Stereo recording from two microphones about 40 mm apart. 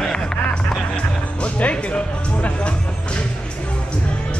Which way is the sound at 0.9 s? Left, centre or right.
Left.